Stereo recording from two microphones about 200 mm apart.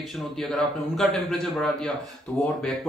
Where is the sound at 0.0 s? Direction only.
Centre (ahead or behind).